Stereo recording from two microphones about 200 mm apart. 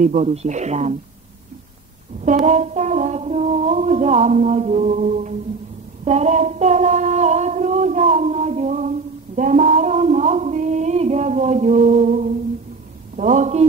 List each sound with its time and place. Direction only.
0.0 s music: 35° right (ahead or behind)
2.4 s music: 35° right (ahead or behind)
6.0 s female singing: 35° right (ahead or behind)
13.1 s a man's voice: 40° right (ahead or behind)